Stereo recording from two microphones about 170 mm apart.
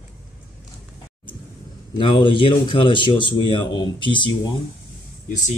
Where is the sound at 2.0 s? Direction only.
30° left (ahead or behind).